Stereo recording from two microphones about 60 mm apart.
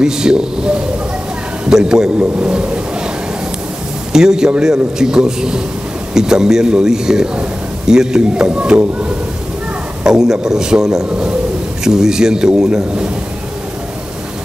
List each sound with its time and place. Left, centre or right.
0.0 s a man's voice: centre
4.1 s a man's voice: centre